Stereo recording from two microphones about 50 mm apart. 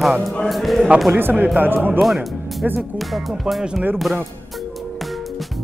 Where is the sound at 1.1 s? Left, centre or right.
Right.